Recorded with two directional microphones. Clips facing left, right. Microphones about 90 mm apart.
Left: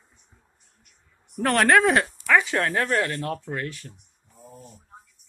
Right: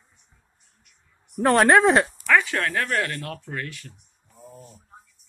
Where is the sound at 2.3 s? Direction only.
20° left (ahead or behind).